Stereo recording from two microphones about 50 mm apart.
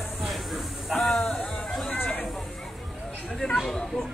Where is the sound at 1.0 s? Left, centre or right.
Centre.